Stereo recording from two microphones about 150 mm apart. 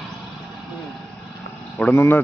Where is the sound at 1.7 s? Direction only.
10° left (ahead or behind).